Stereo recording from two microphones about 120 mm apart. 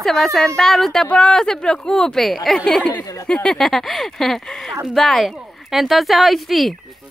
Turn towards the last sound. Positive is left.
turn(degrees=0)  # may be behind; listen again after turning